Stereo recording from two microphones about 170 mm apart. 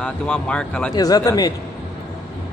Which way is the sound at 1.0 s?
20° left (ahead or behind).